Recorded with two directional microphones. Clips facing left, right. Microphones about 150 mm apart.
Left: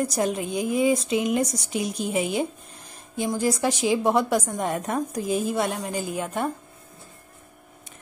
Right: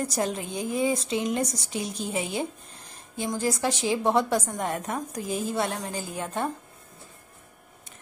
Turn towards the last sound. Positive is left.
turn(degrees=15)  # may be behind; listen again after turning